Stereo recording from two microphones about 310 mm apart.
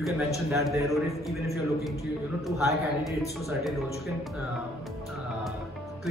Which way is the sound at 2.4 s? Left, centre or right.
Centre.